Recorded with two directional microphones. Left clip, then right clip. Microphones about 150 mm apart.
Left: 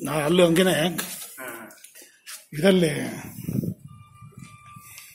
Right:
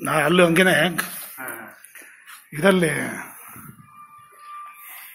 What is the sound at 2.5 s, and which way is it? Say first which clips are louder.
Speech: right 2 dB; 40° left (ahead or behind).